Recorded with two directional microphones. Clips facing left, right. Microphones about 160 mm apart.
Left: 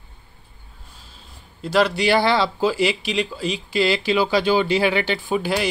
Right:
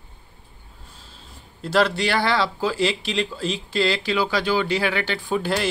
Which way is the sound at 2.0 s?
15° left (ahead or behind).